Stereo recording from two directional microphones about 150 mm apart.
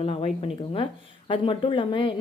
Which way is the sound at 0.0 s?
40° left (ahead or behind).